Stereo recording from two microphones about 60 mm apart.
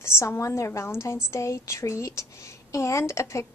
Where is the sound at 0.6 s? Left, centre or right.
Left.